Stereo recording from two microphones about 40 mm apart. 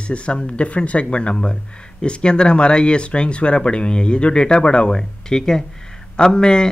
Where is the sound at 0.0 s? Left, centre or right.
Left.